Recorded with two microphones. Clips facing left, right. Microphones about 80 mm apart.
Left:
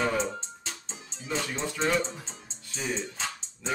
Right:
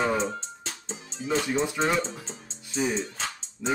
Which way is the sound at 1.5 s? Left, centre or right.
Right.